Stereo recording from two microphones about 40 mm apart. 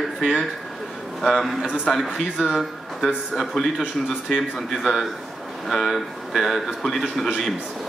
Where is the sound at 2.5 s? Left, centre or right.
Centre.